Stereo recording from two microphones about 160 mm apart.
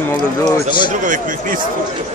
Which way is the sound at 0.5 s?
30° left (ahead or behind).